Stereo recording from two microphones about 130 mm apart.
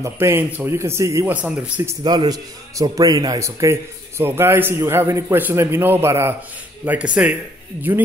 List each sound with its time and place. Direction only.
0.0 s a man's voice: 20° right (ahead or behind)
1.3 s speech: 10° right (ahead or behind)
2.0 s a man's voice: 30° right (ahead or behind); by 7.3 s 10° right (ahead or behind)